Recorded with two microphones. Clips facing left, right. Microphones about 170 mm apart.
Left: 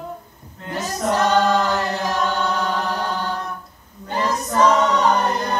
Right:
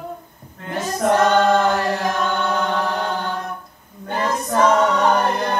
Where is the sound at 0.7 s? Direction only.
55° right (ahead or behind).